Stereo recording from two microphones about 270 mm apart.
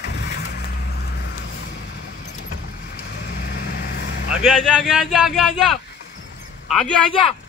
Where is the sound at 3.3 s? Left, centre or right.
Left.